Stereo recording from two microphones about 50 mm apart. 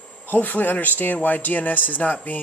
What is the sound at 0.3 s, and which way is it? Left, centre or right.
Speech, left.